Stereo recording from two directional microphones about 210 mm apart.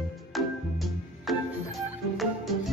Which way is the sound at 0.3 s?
Centre (ahead or behind).